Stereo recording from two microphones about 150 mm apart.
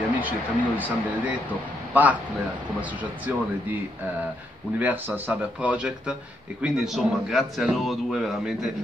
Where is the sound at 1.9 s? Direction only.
10° right (ahead or behind).